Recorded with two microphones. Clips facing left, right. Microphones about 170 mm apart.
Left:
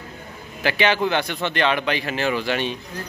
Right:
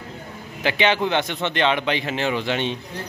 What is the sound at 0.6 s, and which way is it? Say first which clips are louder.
A man's voice: even; 20° right (ahead or behind).